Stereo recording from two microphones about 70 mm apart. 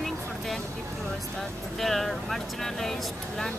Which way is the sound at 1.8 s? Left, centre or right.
Centre.